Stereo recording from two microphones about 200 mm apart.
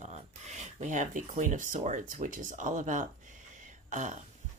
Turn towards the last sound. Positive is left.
turn(degrees=-35)  # may be behind; listen again after turning